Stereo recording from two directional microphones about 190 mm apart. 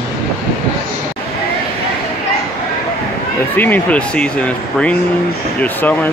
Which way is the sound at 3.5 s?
10° left (ahead or behind).